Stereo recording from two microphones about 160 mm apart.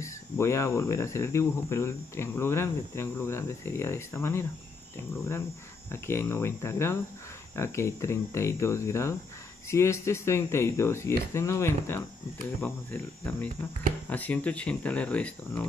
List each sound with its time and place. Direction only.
0.0 s speech: 15° left (ahead or behind)